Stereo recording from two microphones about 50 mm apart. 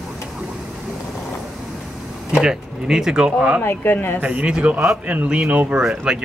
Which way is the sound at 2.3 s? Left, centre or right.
Centre.